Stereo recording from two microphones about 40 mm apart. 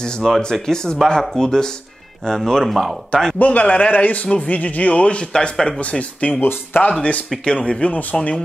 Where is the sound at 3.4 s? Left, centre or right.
Left.